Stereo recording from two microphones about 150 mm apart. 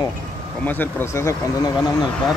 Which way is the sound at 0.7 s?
15° left (ahead or behind).